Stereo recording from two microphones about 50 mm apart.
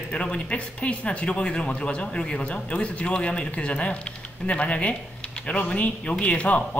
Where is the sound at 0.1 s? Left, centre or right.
Left.